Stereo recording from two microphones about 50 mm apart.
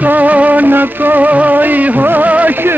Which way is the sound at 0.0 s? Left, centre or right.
Right.